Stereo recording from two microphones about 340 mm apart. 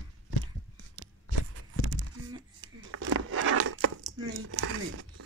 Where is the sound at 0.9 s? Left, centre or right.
Right.